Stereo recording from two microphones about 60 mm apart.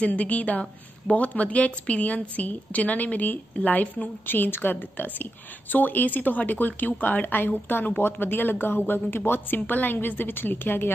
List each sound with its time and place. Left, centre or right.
0.0 s a woman's voice: left